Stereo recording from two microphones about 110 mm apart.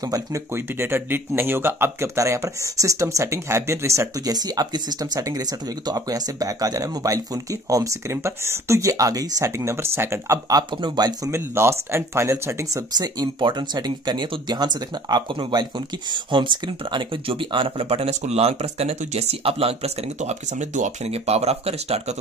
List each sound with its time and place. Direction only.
0.1 s speech: 25° right (ahead or behind)
11.3 s speech: 25° right (ahead or behind)
12.9 s speech: 35° right (ahead or behind); by 22.1 s 70° right (ahead or behind)